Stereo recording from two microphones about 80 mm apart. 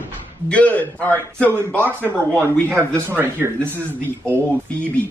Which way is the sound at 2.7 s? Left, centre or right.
Right.